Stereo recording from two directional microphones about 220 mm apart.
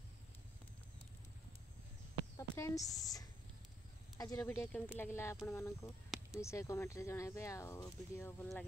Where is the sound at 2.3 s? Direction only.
15° left (ahead or behind).